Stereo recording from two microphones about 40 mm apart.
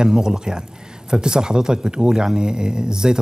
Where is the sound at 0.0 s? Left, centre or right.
Centre.